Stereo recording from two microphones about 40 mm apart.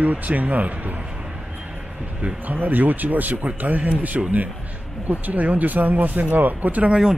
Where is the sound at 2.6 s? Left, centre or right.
Right.